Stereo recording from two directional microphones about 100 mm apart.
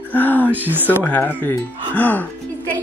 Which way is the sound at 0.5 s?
20° right (ahead or behind).